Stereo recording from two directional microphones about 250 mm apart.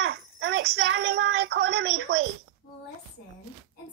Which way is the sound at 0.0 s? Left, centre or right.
Right.